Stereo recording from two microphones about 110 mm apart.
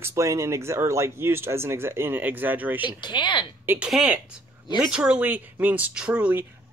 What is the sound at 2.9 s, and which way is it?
Speech, 45° left (ahead or behind).